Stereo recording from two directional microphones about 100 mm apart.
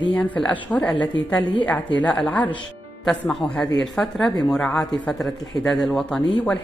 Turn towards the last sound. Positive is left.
turn(degrees=10)  # may be behind; listen again after turning